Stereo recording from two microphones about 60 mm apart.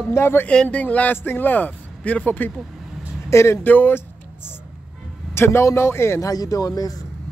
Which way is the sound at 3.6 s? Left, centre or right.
Left.